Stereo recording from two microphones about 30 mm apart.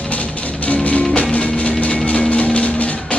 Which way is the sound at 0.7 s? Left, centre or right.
Left.